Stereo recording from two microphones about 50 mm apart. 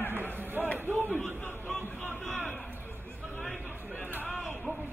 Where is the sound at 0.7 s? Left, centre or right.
Right.